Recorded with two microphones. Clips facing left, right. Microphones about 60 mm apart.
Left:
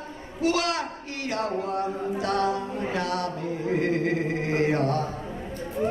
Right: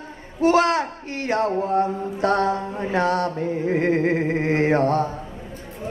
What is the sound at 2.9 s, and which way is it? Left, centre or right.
Chant, right.